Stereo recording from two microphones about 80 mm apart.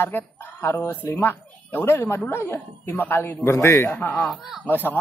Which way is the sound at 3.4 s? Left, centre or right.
Left.